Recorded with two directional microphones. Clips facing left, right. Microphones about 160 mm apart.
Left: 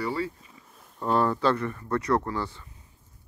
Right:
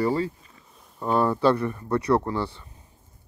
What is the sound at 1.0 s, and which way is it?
Speech, 5° right (ahead or behind).